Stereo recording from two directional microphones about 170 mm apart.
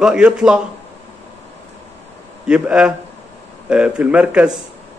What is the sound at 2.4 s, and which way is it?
A man's voice, 5° right (ahead or behind).